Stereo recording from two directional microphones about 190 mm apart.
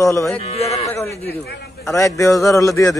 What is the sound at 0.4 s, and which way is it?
Speech, 30° left (ahead or behind).